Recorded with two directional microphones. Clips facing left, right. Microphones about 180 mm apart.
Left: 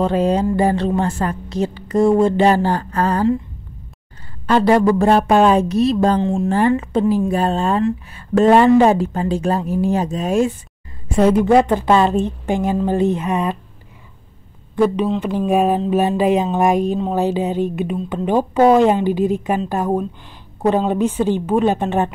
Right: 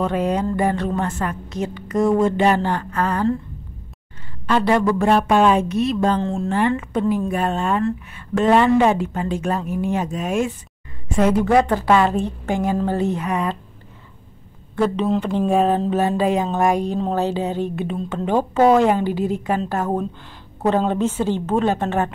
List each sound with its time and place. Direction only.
0.0 s a woman's voice: 30° left (ahead or behind)
4.5 s a woman's voice: 40° left (ahead or behind)
6.1 s a woman's voice: 15° left (ahead or behind)
6.8 s a woman's voice: 30° left (ahead or behind)
14.8 s a woman's voice: 15° left (ahead or behind)